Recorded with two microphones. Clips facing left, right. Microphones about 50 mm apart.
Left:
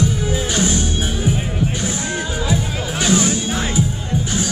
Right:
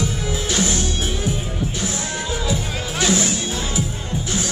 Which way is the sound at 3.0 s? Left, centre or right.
Left.